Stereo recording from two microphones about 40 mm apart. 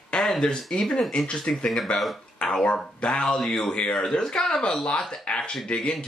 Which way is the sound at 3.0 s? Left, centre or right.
Left.